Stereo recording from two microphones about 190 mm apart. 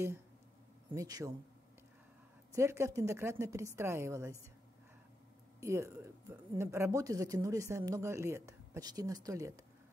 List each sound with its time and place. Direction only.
0.9 s speech: 20° right (ahead or behind)
2.5 s speech: 15° right (ahead or behind)
5.6 s speech: 15° right (ahead or behind)